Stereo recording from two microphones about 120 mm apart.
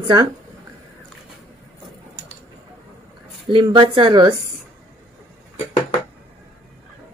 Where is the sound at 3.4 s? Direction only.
45° right (ahead or behind).